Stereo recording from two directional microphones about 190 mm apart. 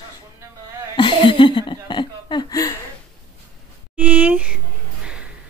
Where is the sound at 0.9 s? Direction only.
25° left (ahead or behind).